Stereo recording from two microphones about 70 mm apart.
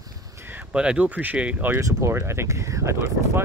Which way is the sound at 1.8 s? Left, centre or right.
Right.